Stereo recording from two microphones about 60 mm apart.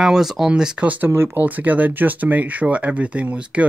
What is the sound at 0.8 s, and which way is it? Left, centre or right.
Speech, right.